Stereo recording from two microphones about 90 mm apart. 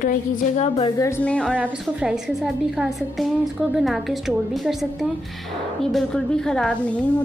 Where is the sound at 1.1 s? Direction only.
15° left (ahead or behind).